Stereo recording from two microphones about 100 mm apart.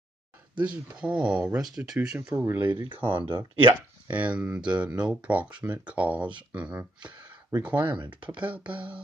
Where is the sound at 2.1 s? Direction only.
25° right (ahead or behind).